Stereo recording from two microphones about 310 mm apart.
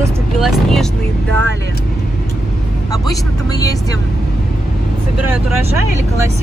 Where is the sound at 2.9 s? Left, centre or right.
Centre.